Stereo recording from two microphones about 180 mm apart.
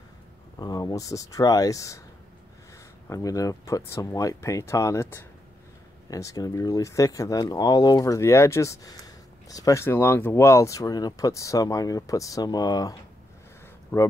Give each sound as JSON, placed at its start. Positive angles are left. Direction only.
{"t": 0.6, "sound": "speech", "side_deg": 20}
{"t": 3.1, "sound": "speech", "side_deg": 20}